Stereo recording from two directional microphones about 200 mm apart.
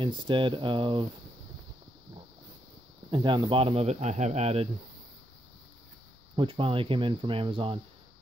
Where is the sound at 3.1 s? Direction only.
25° right (ahead or behind).